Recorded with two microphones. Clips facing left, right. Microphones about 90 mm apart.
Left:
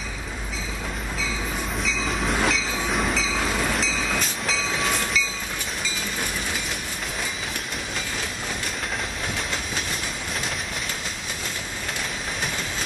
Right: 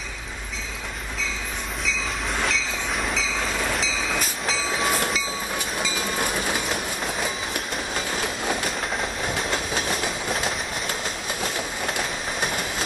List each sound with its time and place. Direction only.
1.9 s train: centre (ahead or behind)
6.2 s train: 50° right (ahead or behind)
9.5 s train: 50° right (ahead or behind)